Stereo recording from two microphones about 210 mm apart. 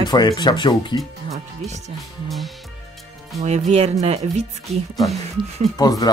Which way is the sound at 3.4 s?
30° right (ahead or behind).